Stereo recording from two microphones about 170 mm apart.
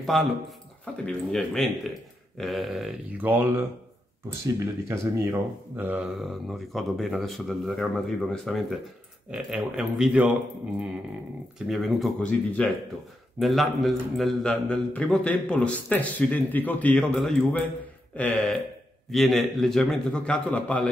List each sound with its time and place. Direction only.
0.0 s speech: centre (ahead or behind)
11.5 s a man's voice: centre (ahead or behind)